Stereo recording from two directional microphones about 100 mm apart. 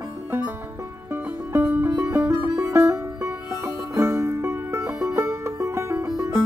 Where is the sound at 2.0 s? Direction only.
25° right (ahead or behind).